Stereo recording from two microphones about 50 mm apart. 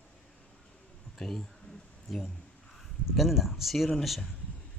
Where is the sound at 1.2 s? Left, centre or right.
Centre.